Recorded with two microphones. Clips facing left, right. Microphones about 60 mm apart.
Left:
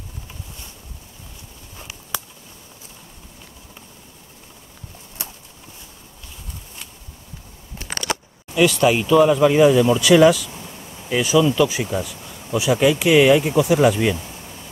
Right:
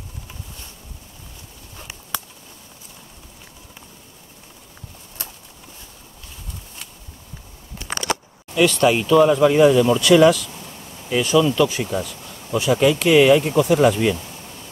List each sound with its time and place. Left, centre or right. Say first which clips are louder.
8.5 s speech: even; centre